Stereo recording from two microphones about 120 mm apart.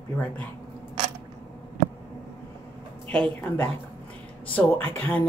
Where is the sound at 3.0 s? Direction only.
10° left (ahead or behind).